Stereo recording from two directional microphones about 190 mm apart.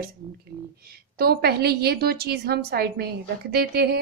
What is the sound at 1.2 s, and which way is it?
A woman's voice, 55° right (ahead or behind).